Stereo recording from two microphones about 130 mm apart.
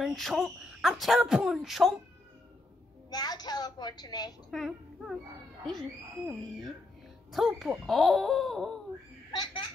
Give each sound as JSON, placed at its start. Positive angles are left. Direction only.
{"t": 0.0, "sound": "speech", "side_deg": 0}
{"t": 3.1, "sound": "a woman's voice", "side_deg": 30}
{"t": 4.5, "sound": "speech", "side_deg": 0}
{"t": 9.3, "sound": "a sound", "side_deg": 35}